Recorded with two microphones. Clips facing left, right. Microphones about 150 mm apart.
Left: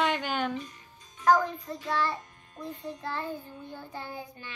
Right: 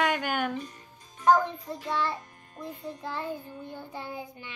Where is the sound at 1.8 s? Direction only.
15° right (ahead or behind).